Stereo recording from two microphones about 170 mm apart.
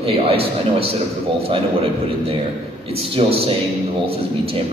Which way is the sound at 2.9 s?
35° right (ahead or behind).